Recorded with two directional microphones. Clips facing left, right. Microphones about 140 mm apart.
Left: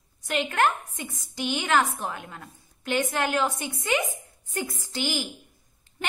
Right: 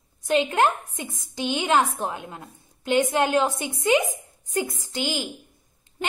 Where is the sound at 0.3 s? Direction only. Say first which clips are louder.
Right 4 dB; 20° right (ahead or behind).